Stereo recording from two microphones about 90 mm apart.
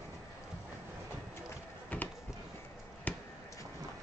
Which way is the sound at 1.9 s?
20° left (ahead or behind).